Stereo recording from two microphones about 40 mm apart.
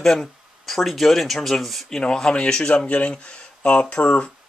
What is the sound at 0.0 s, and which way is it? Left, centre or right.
Speech, centre.